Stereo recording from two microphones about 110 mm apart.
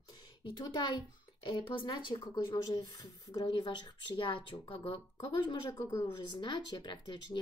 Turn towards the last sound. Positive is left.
turn(degrees=40)  # may be behind; listen again after turning